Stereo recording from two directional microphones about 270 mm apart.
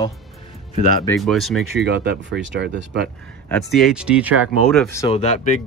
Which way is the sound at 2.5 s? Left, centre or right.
Right.